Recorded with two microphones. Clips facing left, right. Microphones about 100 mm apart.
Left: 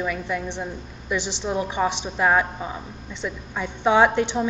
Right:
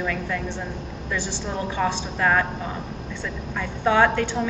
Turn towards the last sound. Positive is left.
turn(degrees=20)  # may be behind; listen again after turning